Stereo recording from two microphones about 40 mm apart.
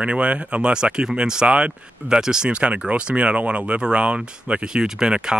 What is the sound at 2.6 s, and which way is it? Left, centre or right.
Speech, right.